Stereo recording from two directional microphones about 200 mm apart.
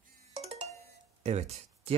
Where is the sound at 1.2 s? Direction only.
35° right (ahead or behind).